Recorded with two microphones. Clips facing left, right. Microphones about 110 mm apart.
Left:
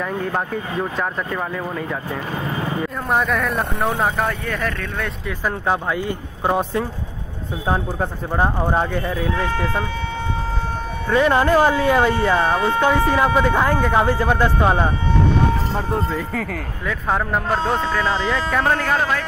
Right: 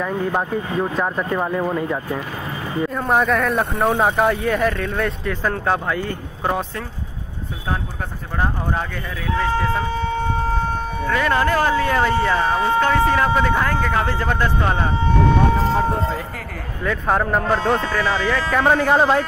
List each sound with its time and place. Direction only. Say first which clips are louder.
0.0 s speech: right 2 dB; 10° right (ahead or behind)
1.3 s speech: right 4 dB; 15° right (ahead or behind)
3.1 s speech: right 2 dB; centre (ahead or behind)
5.4 s speech: even; 10° left (ahead or behind)
8.4 s speech: left 4 dB; 25° left (ahead or behind)
11.1 s speech: left 3 dB; 20° left (ahead or behind)
16.8 s speech: right 3 dB; centre (ahead or behind)
18.1 s speech: right 1 dB; 20° left (ahead or behind)
18.6 s speech: right 5 dB; 15° right (ahead or behind)